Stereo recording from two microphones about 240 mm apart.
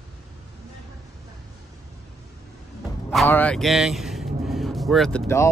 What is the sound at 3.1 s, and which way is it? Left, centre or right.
Speech, centre.